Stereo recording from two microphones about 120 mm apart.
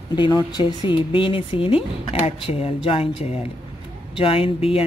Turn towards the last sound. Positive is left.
turn(degrees=50)  # may be behind; listen again after turning